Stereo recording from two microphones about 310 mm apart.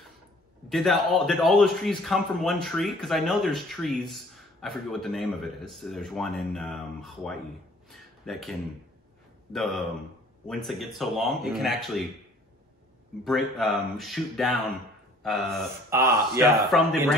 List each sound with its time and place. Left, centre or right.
0.7 s a man's voice: centre
7.9 s a sound: centre
9.5 s a man's voice: centre
13.2 s a man's voice: centre